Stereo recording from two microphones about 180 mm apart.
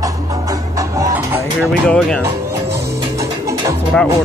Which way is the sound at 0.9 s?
15° right (ahead or behind).